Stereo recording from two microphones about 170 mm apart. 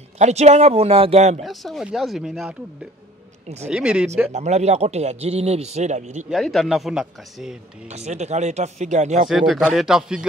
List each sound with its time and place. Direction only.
0.2 s speech: 40° right (ahead or behind)
1.4 s speech: centre (ahead or behind)
3.4 s speech: 40° right (ahead or behind)
3.7 s speech: 5° right (ahead or behind)
4.3 s speech: 40° right (ahead or behind)
6.3 s speech: centre (ahead or behind)
7.9 s speech: 40° right (ahead or behind)
9.3 s speech: centre (ahead or behind)